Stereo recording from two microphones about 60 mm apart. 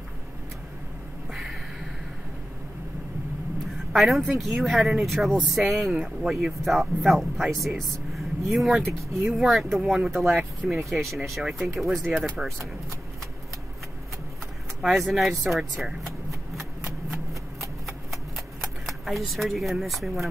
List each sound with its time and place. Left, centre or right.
1.3 s a sound: centre
3.9 s speech: centre
14.8 s speech: centre
17.3 s shuffling cards: right
18.9 s speech: centre